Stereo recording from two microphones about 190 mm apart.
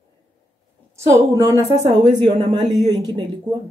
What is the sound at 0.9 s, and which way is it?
A woman's voice, 15° right (ahead or behind).